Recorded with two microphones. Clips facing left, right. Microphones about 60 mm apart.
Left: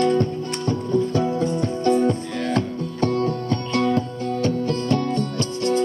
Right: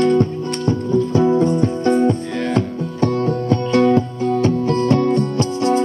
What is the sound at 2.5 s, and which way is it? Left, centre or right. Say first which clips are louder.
Music: right 3 dB; right.